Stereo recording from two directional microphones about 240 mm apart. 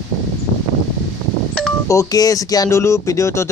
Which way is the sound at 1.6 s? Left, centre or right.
Centre.